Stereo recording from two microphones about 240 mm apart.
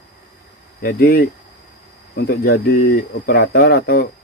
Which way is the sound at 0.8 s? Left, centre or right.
Left.